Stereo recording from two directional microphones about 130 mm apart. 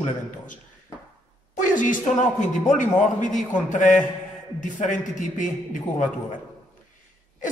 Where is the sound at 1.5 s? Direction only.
90° left.